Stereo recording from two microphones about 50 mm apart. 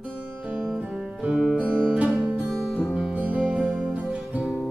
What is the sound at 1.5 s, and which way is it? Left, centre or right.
Music, right.